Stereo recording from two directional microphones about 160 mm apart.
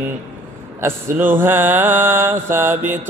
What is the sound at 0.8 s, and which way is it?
Mantra, 15° right (ahead or behind).